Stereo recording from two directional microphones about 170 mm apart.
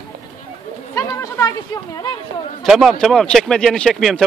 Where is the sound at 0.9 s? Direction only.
20° left (ahead or behind).